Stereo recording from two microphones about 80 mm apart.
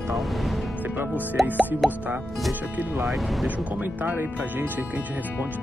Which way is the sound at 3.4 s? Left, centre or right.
Centre.